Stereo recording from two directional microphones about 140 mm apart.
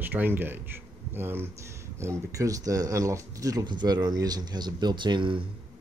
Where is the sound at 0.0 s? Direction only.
15° right (ahead or behind).